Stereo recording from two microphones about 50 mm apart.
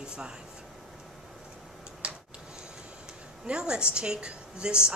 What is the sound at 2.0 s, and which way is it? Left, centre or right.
Tick-tock, right.